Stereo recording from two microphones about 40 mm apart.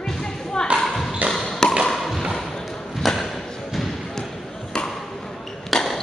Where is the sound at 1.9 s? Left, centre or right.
Centre.